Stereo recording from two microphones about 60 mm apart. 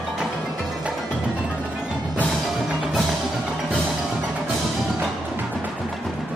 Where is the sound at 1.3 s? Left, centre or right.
Right.